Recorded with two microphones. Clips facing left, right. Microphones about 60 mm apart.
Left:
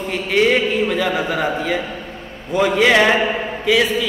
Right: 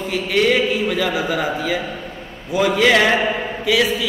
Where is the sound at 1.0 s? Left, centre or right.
Centre.